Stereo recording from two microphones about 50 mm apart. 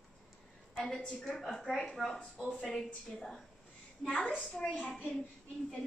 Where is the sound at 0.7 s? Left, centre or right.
Centre.